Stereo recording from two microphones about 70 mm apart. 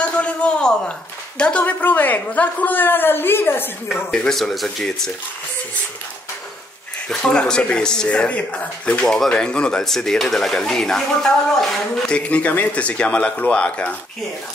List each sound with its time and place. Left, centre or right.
0.0 s a man's voice: centre; by 3.7 s left
4.1 s speech: centre
4.4 s speech: centre
7.1 s speech: centre
9.0 s speech: centre
12.3 s a woman's voice: left